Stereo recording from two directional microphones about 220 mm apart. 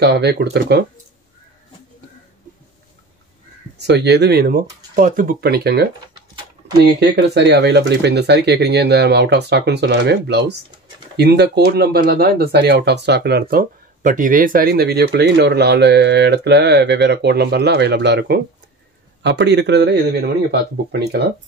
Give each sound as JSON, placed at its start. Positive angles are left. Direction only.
{"t": 0.0, "sound": "speech", "side_deg": -50}
{"t": 3.7, "sound": "speech", "side_deg": -50}
{"t": 7.0, "sound": "speech", "side_deg": -50}